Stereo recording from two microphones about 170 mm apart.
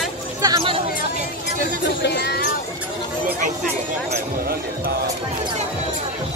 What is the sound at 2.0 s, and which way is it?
Chatter, 75° left (ahead or behind).